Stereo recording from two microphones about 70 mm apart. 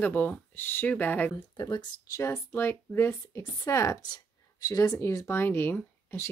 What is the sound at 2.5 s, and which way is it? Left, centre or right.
Speech, left.